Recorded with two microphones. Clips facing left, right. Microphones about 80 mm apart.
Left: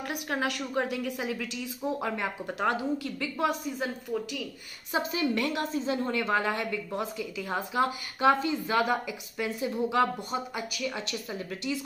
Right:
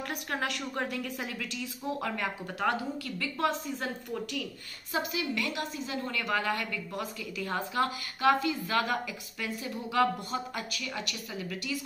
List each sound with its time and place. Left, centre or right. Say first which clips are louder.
0.1 s a woman's voice: left 4 dB; centre
4.9 s a woman's voice: left 4 dB; left; by 11.1 s centre
11.1 s a woman's voice: left 3 dB; left